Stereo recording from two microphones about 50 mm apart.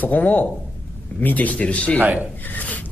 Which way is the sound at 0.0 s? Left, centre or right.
Left.